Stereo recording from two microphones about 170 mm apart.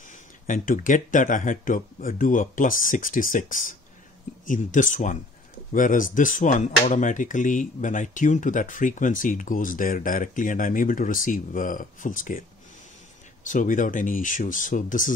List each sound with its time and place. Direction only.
0.5 s speech: 50° left (ahead or behind)
13.5 s speech: 50° left (ahead or behind)